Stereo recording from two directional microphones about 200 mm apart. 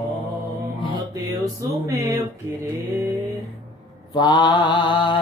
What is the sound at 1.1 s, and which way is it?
Music, 15° right (ahead or behind).